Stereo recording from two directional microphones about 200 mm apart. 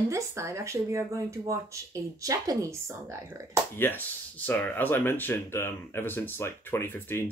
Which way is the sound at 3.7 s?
10° left (ahead or behind).